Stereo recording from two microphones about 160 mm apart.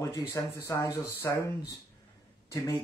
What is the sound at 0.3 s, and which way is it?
Speech, 20° left (ahead or behind).